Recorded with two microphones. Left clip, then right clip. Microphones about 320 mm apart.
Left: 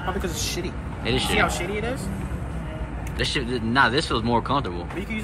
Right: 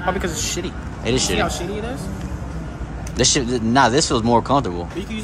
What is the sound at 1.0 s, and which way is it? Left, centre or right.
Speech, centre.